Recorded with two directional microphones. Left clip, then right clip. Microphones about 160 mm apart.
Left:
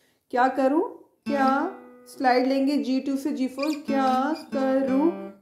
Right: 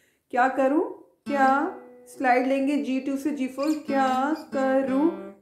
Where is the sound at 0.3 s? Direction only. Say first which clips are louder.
Even; 25° left (ahead or behind).